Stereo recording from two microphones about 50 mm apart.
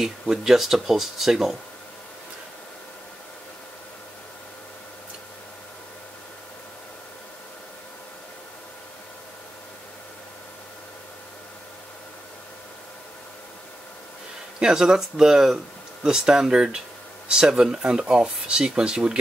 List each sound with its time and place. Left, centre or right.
0.0 s speech: centre
14.6 s speech: centre